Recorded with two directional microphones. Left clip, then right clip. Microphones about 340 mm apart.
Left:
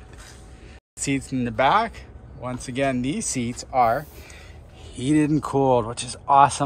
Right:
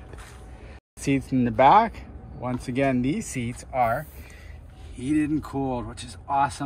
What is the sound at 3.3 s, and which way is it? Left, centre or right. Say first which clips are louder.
Speech: left 6 dB; centre.